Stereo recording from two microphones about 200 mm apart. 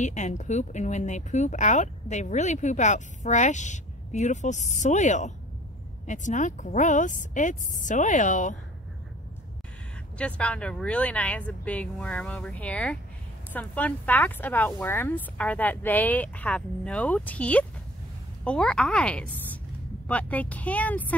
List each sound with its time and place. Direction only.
0.0 s speech: 35° left (ahead or behind)
10.1 s a woman's voice: 5° left (ahead or behind)